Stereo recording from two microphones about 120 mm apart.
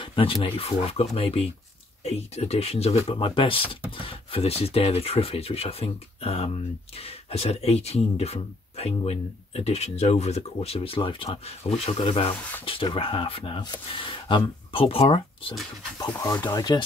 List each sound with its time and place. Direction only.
0.0 s speech: 45° left (ahead or behind)
3.1 s speech: 45° left (ahead or behind)
11.2 s speech: 60° left (ahead or behind)
16.2 s speech: 30° left (ahead or behind)